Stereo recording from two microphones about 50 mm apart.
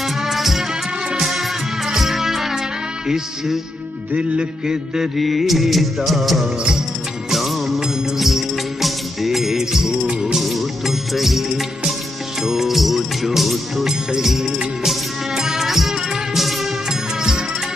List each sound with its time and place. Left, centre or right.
0.0 s music: centre
4.1 s music: right
5.1 s music: centre